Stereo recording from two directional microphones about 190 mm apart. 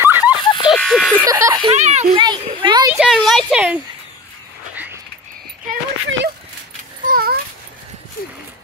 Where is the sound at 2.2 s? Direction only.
25° right (ahead or behind).